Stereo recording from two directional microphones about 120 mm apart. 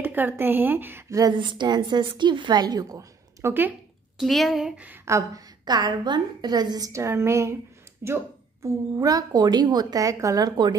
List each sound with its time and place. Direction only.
0.0 s a woman's voice: 15° right (ahead or behind)
1.2 s a woman's voice: 40° right (ahead or behind)
4.2 s speech: centre (ahead or behind)
5.0 s a woman's voice: 25° right (ahead or behind)